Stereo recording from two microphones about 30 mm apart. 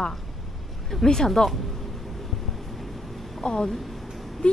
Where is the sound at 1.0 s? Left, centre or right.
Centre.